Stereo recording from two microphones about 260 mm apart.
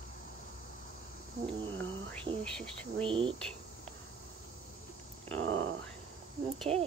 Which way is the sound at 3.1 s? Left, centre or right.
Right.